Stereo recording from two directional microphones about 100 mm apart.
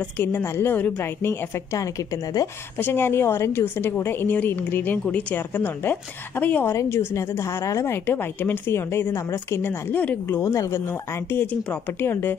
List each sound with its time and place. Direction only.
0.2 s a woman's voice: 20° left (ahead or behind)